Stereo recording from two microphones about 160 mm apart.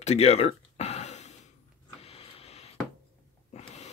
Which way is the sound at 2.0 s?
40° left (ahead or behind).